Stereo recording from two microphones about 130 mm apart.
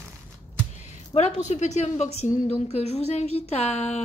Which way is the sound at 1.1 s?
60° left (ahead or behind).